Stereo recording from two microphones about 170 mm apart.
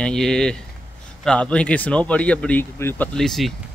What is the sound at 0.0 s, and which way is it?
Speech, 5° left (ahead or behind).